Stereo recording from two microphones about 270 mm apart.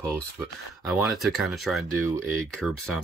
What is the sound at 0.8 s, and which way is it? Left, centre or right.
Speech, centre.